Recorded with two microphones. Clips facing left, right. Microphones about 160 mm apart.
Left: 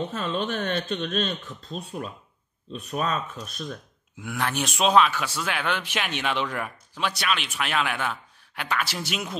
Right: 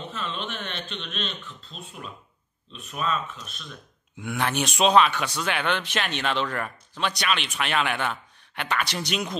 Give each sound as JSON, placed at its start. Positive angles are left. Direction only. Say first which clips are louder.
{"t": 0.1, "sound": "speech", "louder": "left 6 dB", "side_deg": 40}
{"t": 4.2, "sound": "speech", "louder": "right 2 dB", "side_deg": 0}